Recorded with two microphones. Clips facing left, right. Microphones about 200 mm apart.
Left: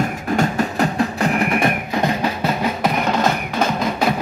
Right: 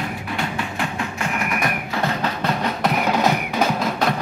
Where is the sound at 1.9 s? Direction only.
15° left (ahead or behind).